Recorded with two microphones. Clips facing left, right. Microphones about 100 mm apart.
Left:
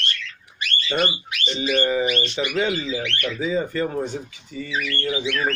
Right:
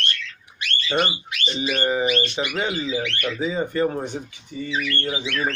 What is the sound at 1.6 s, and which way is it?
Speech, 25° right (ahead or behind).